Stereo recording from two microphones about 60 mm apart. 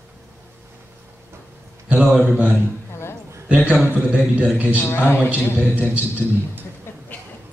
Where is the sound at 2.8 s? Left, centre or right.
Left.